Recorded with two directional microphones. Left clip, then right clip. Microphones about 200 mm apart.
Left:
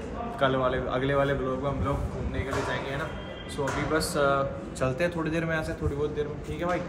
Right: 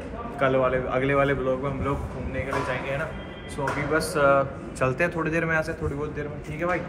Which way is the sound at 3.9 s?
Centre (ahead or behind).